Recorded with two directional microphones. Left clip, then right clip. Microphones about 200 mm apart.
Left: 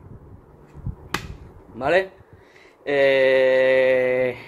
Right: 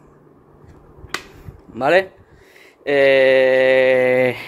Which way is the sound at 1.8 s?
55° right (ahead or behind).